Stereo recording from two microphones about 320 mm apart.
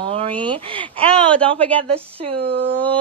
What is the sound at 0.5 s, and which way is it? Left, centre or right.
Speech, centre.